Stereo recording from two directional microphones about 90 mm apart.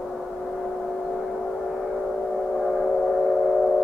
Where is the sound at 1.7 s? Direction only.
Centre (ahead or behind).